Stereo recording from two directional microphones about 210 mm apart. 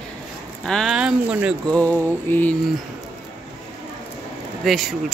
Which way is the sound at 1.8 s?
10° left (ahead or behind).